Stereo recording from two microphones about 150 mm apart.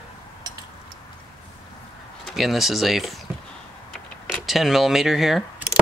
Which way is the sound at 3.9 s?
Centre (ahead or behind).